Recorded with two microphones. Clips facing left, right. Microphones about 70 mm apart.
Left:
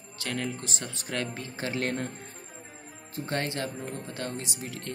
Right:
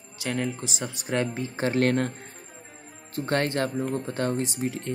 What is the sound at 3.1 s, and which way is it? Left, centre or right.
Speech, right.